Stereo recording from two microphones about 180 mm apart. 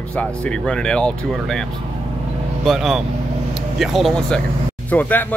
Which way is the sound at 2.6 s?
Centre (ahead or behind).